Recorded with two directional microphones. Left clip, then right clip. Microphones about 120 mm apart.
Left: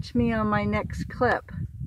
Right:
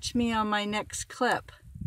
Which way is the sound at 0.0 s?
20° right (ahead or behind).